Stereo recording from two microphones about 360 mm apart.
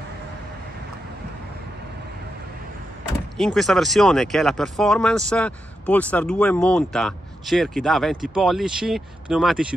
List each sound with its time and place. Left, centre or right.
3.3 s speech: centre